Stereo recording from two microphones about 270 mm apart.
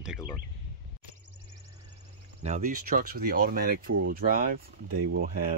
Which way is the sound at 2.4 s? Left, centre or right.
Right.